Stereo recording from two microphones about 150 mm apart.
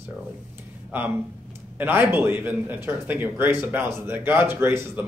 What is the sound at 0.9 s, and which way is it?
Speech, 10° right (ahead or behind).